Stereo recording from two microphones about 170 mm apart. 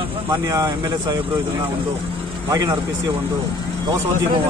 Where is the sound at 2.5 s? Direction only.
20° right (ahead or behind).